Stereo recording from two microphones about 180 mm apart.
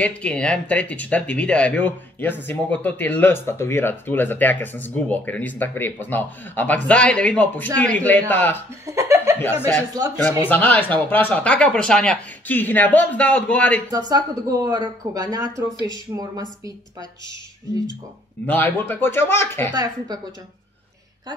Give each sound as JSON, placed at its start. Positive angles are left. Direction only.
{"t": 0.0, "sound": "speech", "side_deg": 5}
{"t": 8.8, "sound": "laughter", "side_deg": -15}
{"t": 9.9, "sound": "speech", "side_deg": -20}
{"t": 10.5, "sound": "speech", "side_deg": 10}
{"t": 13.9, "sound": "speech", "side_deg": -20}
{"t": 18.5, "sound": "speech", "side_deg": 10}
{"t": 19.7, "sound": "speech", "side_deg": -20}